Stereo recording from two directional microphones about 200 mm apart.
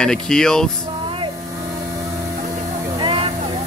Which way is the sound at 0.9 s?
25° right (ahead or behind).